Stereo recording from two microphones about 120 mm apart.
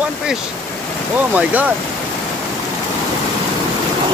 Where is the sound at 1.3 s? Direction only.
15° right (ahead or behind).